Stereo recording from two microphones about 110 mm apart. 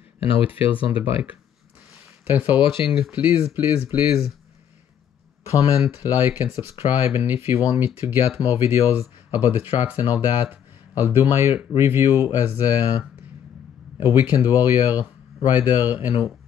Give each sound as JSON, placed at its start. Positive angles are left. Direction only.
{"t": 0.2, "sound": "speech", "side_deg": 55}
{"t": 2.0, "sound": "a sound", "side_deg": -20}
{"t": 3.0, "sound": "speech", "side_deg": -15}
{"t": 5.8, "sound": "speech", "side_deg": -20}
{"t": 10.4, "sound": "a sound", "side_deg": -20}
{"t": 11.3, "sound": "speech", "side_deg": -20}